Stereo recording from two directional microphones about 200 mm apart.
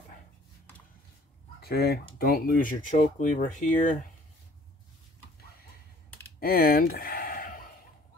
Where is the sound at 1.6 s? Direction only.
50° left (ahead or behind).